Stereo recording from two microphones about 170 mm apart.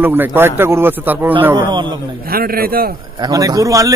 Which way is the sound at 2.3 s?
60° right (ahead or behind).